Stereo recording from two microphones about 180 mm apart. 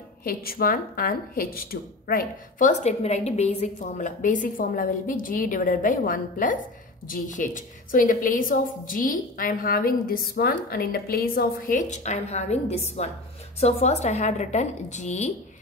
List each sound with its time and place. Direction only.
0.2 s a woman's voice: 55° left (ahead or behind)
2.8 s a woman's voice: 40° left (ahead or behind)